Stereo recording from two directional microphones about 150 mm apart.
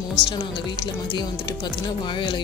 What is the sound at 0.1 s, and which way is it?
Speech, 30° left (ahead or behind).